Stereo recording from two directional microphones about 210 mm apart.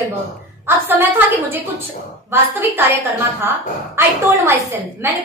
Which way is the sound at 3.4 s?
10° right (ahead or behind).